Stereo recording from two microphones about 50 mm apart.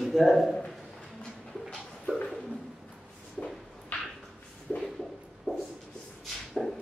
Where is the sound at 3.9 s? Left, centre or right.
Left.